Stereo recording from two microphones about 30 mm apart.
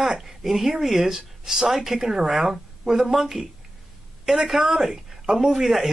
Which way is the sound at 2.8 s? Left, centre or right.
Right.